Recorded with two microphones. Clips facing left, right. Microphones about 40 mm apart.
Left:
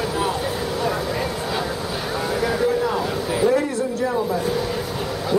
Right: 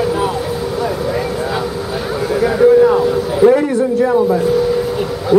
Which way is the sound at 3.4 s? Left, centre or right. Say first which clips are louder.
Right 9 dB; right.